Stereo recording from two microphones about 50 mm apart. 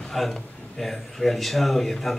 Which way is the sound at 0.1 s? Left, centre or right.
Centre.